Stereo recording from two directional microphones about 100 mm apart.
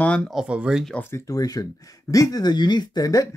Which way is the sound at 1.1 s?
35° left (ahead or behind).